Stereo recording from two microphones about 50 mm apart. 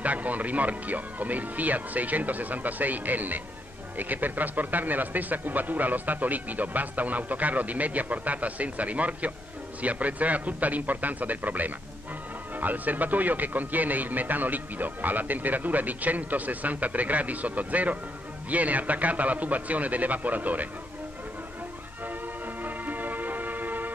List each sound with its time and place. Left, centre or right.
0.0 s speech: right
22.6 s music: right